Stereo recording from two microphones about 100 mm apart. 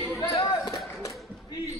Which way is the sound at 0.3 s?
45° left (ahead or behind).